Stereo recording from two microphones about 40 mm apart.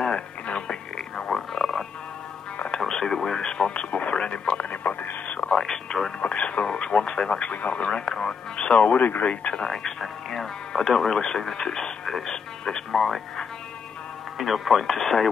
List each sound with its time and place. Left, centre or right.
0.0 s music: left
2.8 s radio: centre
3.3 s radio: left
4.6 s radio: left
5.4 s radio: left
6.2 s radio: left
9.2 s speech: left
9.7 s music: centre
14.4 s speech: centre